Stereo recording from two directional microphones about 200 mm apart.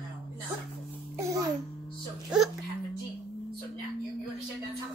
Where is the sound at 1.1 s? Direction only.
15° right (ahead or behind).